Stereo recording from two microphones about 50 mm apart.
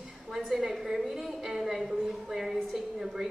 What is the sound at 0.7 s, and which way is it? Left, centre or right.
A woman's voice, centre.